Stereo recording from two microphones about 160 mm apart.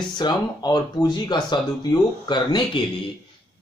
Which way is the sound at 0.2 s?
25° left (ahead or behind).